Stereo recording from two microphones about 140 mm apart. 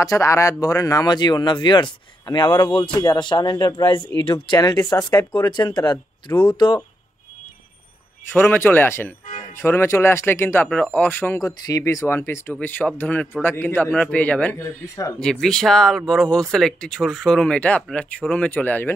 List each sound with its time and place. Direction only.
0.0 s speech: 20° left (ahead or behind)
8.3 s speech: 15° left (ahead or behind)
11.4 s speech: 25° left (ahead or behind)
15.1 s speech: 5° left (ahead or behind)